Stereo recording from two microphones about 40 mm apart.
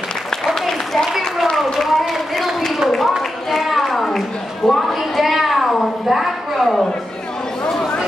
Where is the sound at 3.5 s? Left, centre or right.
Centre.